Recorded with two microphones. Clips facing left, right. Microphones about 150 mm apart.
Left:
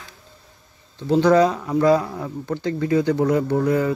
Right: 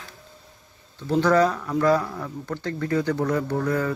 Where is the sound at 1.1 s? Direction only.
20° left (ahead or behind).